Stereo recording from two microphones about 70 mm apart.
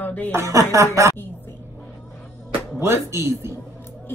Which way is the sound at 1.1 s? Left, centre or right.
Left.